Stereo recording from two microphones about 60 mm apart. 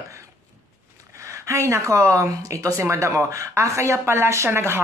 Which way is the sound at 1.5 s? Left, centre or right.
Right.